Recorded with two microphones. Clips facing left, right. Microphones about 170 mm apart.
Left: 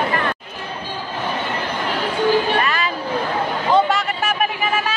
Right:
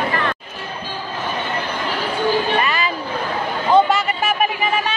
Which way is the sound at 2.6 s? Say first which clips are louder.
Even; centre (ahead or behind).